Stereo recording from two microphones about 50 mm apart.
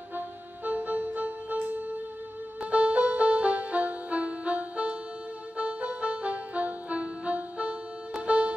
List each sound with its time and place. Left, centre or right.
0.7 s music: right
2.6 s music: right